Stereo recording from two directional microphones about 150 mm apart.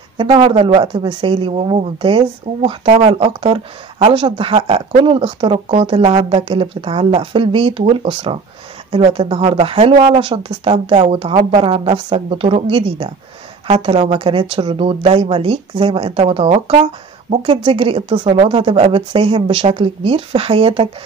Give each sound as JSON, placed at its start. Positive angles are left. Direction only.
{"t": 0.2, "sound": "speech", "side_deg": -35}